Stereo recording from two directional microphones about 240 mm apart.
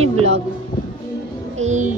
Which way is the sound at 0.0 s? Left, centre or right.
Right.